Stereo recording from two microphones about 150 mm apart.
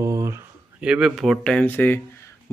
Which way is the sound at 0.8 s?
5° right (ahead or behind).